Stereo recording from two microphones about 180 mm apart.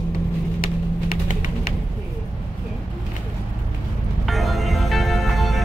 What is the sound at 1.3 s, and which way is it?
Pigeon, 45° left (ahead or behind).